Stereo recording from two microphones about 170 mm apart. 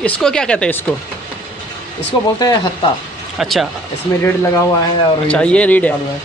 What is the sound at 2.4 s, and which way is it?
Speech, 25° left (ahead or behind).